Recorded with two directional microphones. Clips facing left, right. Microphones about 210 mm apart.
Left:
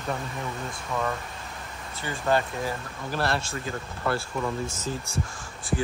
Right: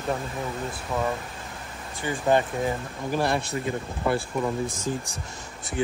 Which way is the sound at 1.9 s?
15° right (ahead or behind).